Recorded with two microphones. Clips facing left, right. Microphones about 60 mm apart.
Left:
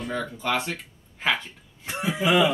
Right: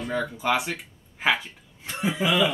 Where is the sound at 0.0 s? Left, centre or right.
Centre.